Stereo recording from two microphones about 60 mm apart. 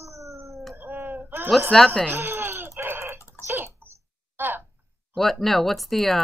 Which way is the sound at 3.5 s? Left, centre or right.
Right.